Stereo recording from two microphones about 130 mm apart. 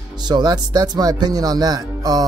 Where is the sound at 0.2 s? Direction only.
35° right (ahead or behind).